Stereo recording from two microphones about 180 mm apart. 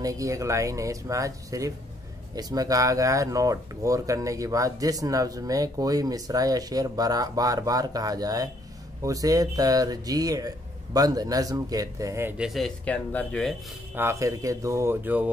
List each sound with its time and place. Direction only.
0.0 s speech: 20° right (ahead or behind); by 13.6 s 5° left (ahead or behind)
13.9 s speech: 15° right (ahead or behind)